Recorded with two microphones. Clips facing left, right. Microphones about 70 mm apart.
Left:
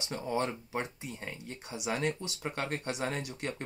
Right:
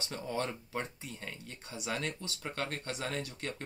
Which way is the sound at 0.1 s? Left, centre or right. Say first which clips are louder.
Left 4 dB; centre.